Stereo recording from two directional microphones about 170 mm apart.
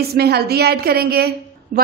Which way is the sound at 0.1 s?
70° right (ahead or behind).